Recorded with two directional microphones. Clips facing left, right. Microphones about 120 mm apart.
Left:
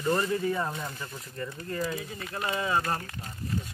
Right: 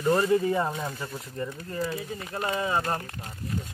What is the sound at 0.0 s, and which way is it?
Speech, 15° right (ahead or behind).